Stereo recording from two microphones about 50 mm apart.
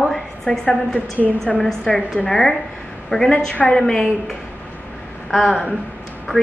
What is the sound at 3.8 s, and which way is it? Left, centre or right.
Speech, centre.